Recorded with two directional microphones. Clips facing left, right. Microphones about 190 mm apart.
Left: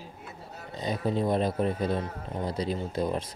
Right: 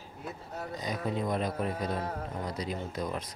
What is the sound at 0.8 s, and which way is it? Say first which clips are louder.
A man's voice: left 5 dB; 30° left (ahead or behind).